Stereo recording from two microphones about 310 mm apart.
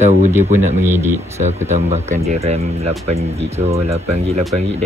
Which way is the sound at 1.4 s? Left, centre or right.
Right.